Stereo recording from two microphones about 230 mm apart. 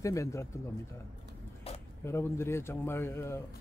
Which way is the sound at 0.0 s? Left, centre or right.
Centre.